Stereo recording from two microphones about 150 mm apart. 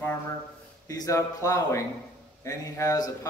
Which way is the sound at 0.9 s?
25° left (ahead or behind).